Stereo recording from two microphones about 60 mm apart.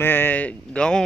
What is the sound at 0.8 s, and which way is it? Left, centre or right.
Speech, centre.